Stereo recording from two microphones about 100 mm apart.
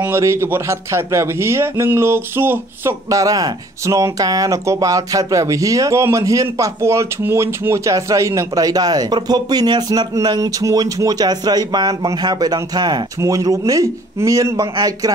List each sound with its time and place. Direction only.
0.2 s a man's voice: 25° right (ahead or behind)